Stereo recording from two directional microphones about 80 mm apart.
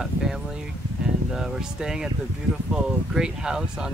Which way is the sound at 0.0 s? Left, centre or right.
Centre.